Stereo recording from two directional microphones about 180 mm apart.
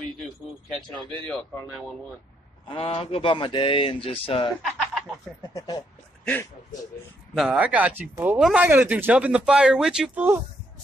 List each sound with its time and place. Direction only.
1.2 s speech: 5° left (ahead or behind)
2.7 s speech: 30° left (ahead or behind)
5.5 s speech: 20° left (ahead or behind)
7.3 s speech: 5° right (ahead or behind)